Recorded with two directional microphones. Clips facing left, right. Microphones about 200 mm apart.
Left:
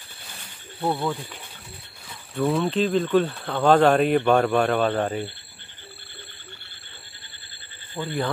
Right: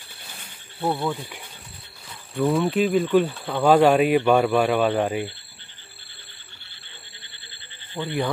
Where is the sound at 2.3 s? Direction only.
10° right (ahead or behind).